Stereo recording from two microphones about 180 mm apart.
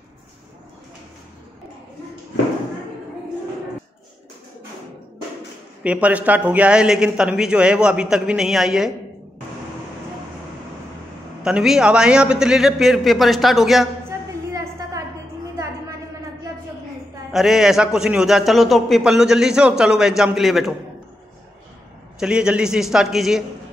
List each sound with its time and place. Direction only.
5.9 s a man's voice: 10° right (ahead or behind)
11.4 s a man's voice: centre (ahead or behind)
14.5 s a sound: 15° right (ahead or behind)
17.3 s a man's voice: centre (ahead or behind)
22.2 s a man's voice: 5° right (ahead or behind)